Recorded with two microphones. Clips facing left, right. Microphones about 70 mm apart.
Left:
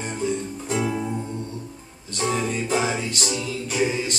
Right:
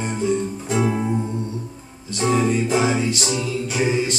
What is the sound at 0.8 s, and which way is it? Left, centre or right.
Music, right.